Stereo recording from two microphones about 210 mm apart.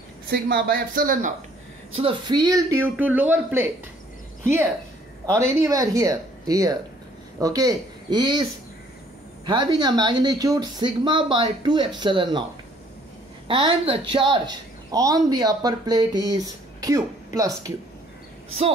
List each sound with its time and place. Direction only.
0.3 s speech: 50° right (ahead or behind)
2.0 s speech: 25° right (ahead or behind)
5.4 s a woman's voice: 15° right (ahead or behind)
9.5 s a woman's voice: 20° right (ahead or behind)
13.5 s a woman's voice: 25° right (ahead or behind)